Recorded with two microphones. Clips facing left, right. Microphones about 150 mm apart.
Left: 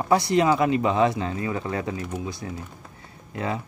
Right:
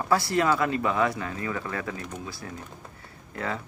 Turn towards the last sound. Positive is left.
turn(degrees=20)  # may be behind; listen again after turning